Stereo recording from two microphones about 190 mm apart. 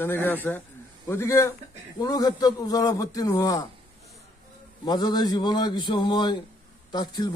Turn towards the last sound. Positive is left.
turn(degrees=20)  # may be behind; listen again after turning